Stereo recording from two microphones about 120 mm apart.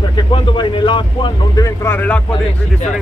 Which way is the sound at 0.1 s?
40° left (ahead or behind).